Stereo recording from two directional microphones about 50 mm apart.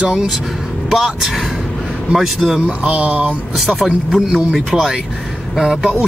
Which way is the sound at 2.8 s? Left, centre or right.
Right.